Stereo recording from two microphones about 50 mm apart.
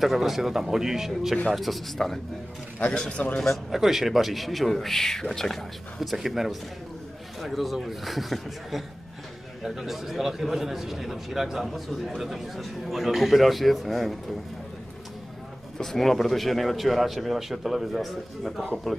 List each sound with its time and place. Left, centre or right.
0.0 s a man's voice: centre
2.8 s a man's voice: left
3.7 s a man's voice: centre
5.9 s a man's voice: centre
15.8 s a man's voice: centre